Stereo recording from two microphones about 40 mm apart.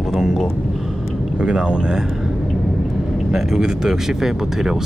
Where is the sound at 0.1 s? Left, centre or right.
Centre.